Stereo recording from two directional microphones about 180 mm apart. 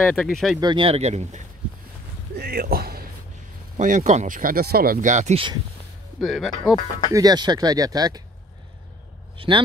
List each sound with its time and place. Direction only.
0.0 s speech: 5° left (ahead or behind)
0.6 s speech: 25° right (ahead or behind)
2.3 s speech: 60° right (ahead or behind)
3.7 s speech: 45° right (ahead or behind)
6.2 s speech: centre (ahead or behind)
7.1 s speech: 20° right (ahead or behind)